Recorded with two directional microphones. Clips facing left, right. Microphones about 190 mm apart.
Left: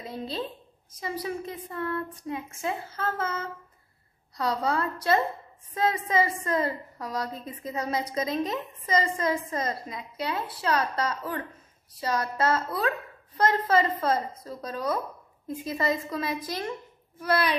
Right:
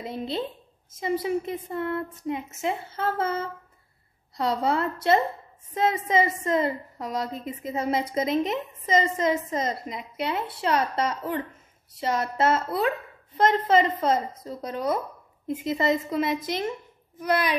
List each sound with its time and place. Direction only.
0.0 s a woman's voice: 25° right (ahead or behind)